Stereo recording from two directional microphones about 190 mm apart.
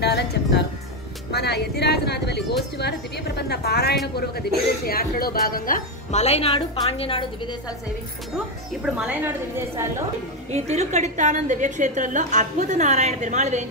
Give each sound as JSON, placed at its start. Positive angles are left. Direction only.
{"t": 0.0, "sound": "music", "side_deg": 60}
{"t": 1.3, "sound": "a woman's voice", "side_deg": 60}
{"t": 6.1, "sound": "a woman's voice", "side_deg": 35}
{"t": 8.8, "sound": "a woman's voice", "side_deg": -5}
{"t": 10.5, "sound": "a woman's voice", "side_deg": -35}